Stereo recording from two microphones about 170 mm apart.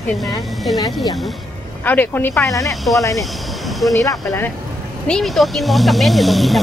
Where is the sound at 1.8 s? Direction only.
10° left (ahead or behind).